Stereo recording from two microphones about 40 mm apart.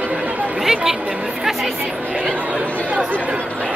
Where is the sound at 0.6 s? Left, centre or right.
Centre.